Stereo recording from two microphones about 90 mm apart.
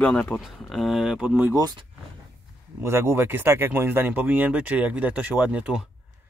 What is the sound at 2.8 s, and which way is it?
Speech, 30° right (ahead or behind).